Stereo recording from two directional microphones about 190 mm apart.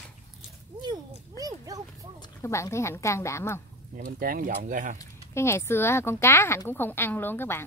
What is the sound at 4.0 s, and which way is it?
Speech, 50° right (ahead or behind).